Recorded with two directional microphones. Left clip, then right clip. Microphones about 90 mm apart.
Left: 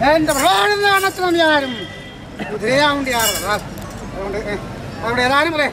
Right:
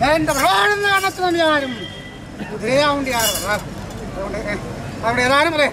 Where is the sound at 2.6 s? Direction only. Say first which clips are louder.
Left 1 dB; 5° left (ahead or behind).